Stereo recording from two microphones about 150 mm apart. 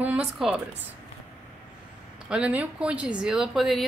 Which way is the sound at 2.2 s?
5° right (ahead or behind).